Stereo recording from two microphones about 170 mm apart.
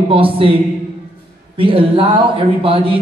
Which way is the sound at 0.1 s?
30° right (ahead or behind).